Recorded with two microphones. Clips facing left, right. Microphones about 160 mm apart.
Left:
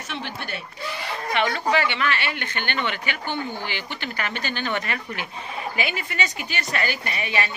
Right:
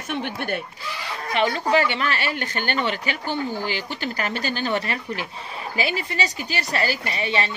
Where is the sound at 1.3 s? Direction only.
35° right (ahead or behind).